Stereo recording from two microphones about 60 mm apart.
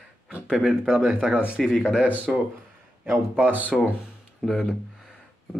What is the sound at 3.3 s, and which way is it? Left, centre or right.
Speech, right.